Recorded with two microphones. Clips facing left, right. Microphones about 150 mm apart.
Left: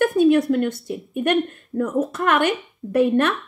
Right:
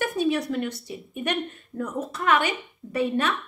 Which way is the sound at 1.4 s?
50° left (ahead or behind).